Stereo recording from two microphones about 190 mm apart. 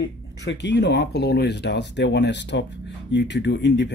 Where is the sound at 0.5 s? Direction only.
65° left (ahead or behind).